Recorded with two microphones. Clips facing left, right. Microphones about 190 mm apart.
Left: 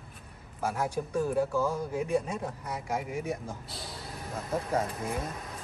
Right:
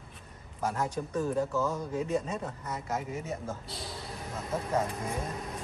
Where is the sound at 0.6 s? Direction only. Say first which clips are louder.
Left 1 dB; 10° left (ahead or behind).